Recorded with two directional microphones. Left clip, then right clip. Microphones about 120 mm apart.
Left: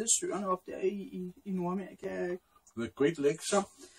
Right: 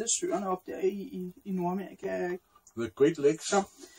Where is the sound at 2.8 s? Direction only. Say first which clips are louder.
Right 4 dB; 5° left (ahead or behind).